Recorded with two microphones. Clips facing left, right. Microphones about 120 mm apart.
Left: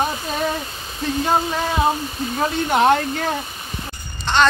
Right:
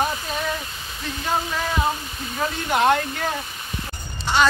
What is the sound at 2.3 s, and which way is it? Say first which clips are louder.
Speech: left 4 dB; 25° left (ahead or behind).